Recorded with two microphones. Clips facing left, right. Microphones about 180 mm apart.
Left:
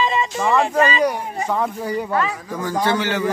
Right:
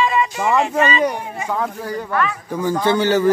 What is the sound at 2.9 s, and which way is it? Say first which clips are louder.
Speech: right 5 dB; 35° right (ahead or behind).